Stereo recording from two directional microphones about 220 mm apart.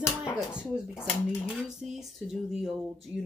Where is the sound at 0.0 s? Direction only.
20° left (ahead or behind).